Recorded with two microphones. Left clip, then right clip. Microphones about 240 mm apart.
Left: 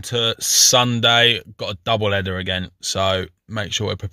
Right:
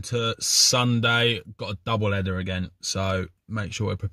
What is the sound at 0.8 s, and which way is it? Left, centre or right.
Speech, centre.